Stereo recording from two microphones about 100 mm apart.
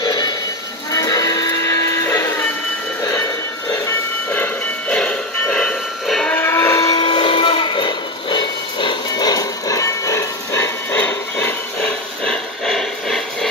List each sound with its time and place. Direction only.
0.0 s sheep: 40° left (ahead or behind)
0.9 s music: 40° left (ahead or behind)
3.0 s train: 30° left (ahead or behind)
4.8 s music: 10° left (ahead or behind)
6.3 s a sound: 25° left (ahead or behind)
6.9 s train: 50° left (ahead or behind); by 11.9 s 20° left (ahead or behind)
12.3 s a sound: 5° left (ahead or behind)